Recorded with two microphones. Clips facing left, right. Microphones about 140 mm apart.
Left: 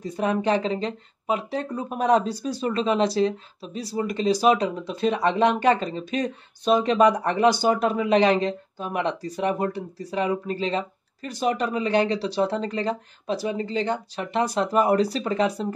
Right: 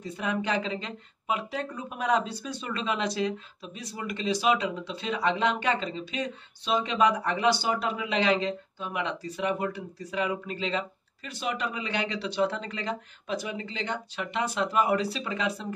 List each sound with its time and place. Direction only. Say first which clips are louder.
0.0 s speech: left 7 dB; 40° left (ahead or behind)